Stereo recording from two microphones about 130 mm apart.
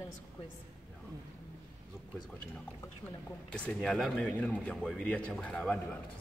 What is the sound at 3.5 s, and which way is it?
Speech, 10° left (ahead or behind).